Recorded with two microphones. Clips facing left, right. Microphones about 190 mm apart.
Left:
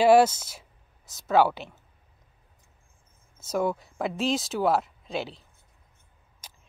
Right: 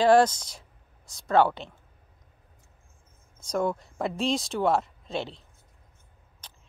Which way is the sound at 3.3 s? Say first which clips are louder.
Left 1 dB; 5° left (ahead or behind).